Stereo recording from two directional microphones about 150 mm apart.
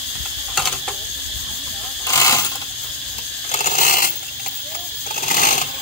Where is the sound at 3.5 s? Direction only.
60° left (ahead or behind).